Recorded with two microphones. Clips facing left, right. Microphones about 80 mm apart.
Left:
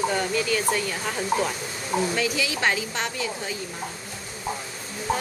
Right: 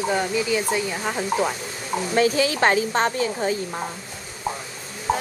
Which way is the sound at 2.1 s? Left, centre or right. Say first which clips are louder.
Right 6 dB; right.